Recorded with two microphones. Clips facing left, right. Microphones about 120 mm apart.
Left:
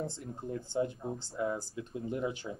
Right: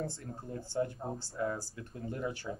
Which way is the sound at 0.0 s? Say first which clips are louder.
Left 1 dB; 20° left (ahead or behind).